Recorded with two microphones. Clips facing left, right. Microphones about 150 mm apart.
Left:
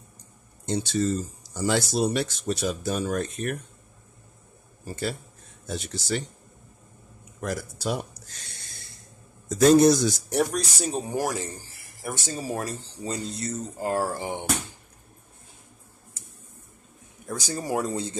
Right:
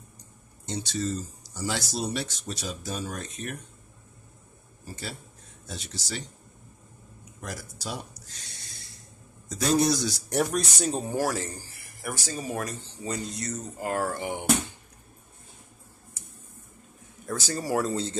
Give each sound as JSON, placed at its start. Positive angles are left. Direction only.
{"t": 0.7, "sound": "speech", "side_deg": 55}
{"t": 5.7, "sound": "speech", "side_deg": 50}
{"t": 7.4, "sound": "speech", "side_deg": 55}
{"t": 9.5, "sound": "speech", "side_deg": 50}
{"t": 10.3, "sound": "speech", "side_deg": 0}
{"t": 10.9, "sound": "speech", "side_deg": 15}
{"t": 17.3, "sound": "speech", "side_deg": 15}